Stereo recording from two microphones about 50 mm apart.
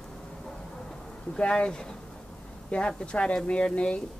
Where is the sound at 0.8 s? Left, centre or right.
Centre.